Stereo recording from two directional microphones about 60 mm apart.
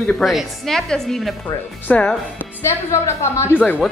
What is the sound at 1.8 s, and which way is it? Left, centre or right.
Speech, left.